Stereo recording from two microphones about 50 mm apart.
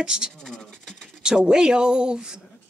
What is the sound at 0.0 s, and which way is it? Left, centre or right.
Speech, centre.